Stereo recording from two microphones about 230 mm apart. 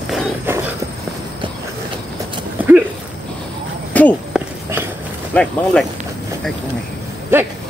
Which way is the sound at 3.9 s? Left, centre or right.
Centre.